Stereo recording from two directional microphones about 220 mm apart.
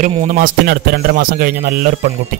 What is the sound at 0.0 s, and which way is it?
Speech, 35° right (ahead or behind).